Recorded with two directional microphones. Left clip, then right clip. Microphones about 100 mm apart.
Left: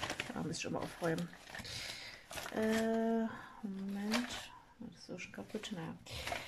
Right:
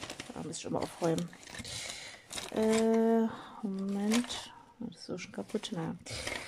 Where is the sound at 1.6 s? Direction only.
35° right (ahead or behind).